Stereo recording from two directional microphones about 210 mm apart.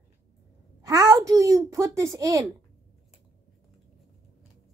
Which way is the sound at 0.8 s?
15° right (ahead or behind).